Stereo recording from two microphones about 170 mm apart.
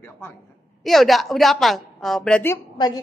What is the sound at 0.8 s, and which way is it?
Speech, centre (ahead or behind).